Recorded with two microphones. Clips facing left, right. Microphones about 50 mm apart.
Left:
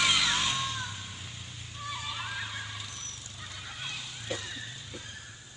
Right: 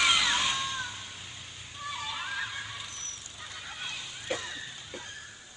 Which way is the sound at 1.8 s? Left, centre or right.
Centre.